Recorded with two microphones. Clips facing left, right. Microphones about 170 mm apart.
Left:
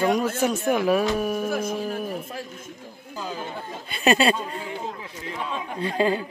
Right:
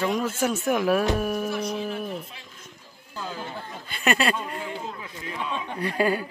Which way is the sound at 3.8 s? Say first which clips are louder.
Left 4 dB; 25° left (ahead or behind).